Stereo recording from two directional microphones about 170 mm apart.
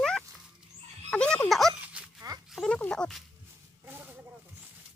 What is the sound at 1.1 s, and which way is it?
Music, 5° left (ahead or behind).